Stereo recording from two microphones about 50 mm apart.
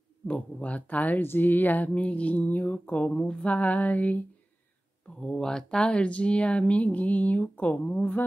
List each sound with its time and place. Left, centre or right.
0.3 s speech: left
3.1 s speech: left
5.2 s speech: centre; by 8.3 s left